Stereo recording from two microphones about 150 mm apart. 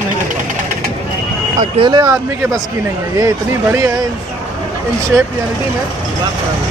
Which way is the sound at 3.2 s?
20° right (ahead or behind).